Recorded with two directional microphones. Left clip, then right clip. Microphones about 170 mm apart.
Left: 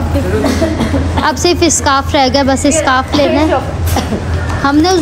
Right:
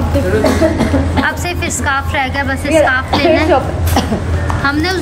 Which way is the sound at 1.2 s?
35° left (ahead or behind).